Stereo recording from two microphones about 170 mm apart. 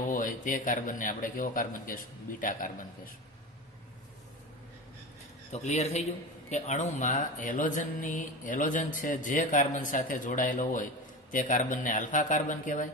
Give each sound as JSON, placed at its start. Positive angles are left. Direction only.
{"t": 0.1, "sound": "speech", "side_deg": 50}
{"t": 5.5, "sound": "a man's voice", "side_deg": 40}